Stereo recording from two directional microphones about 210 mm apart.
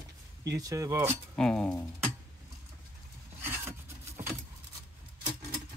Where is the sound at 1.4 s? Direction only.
5° left (ahead or behind).